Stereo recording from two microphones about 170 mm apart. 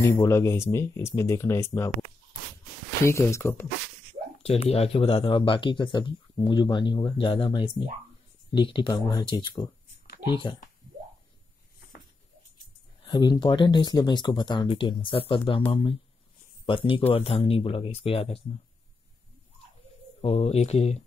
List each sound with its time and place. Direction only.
0.0 s speech: 15° left (ahead or behind)
3.1 s speech: 15° left (ahead or behind)
4.4 s speech: 40° left (ahead or behind)
13.0 s speech: 25° left (ahead or behind)
20.2 s speech: 35° left (ahead or behind)